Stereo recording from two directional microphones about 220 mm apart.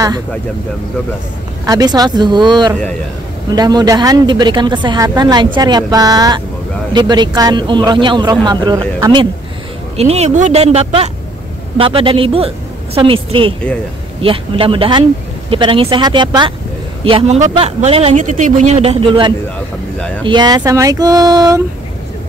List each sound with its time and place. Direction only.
1.7 s a woman's voice: 15° right (ahead or behind)